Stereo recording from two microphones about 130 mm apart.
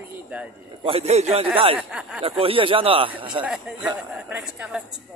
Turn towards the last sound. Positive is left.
turn(degrees=-5)  # may be behind; listen again after turning